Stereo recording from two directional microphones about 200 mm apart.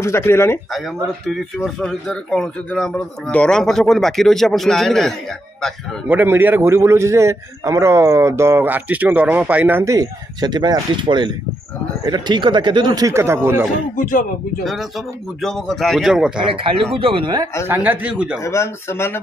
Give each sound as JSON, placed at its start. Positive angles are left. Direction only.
{"t": 0.0, "sound": "speech", "side_deg": 10}
{"t": 0.7, "sound": "a man's voice", "side_deg": 0}
{"t": 6.0, "sound": "a man's voice", "side_deg": -10}
{"t": 13.9, "sound": "speech", "side_deg": 40}
{"t": 14.6, "sound": "a man's voice", "side_deg": 0}
{"t": 16.4, "sound": "speech", "side_deg": -25}
{"t": 17.6, "sound": "a man's voice", "side_deg": -10}
{"t": 18.4, "sound": "speech", "side_deg": 15}